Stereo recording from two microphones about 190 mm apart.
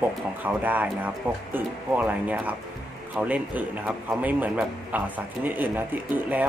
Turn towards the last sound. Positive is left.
turn(degrees=-10)  # may be behind; listen again after turning